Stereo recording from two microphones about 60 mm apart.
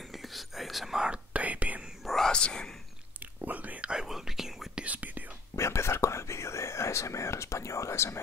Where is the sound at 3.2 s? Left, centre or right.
Right; by 4.8 s centre.